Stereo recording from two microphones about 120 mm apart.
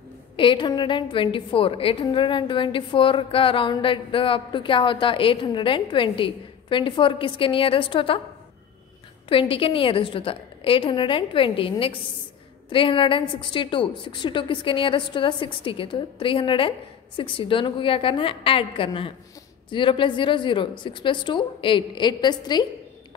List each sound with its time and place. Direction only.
0.4 s a woman's voice: 45° left (ahead or behind)
9.3 s a woman's voice: 50° left (ahead or behind)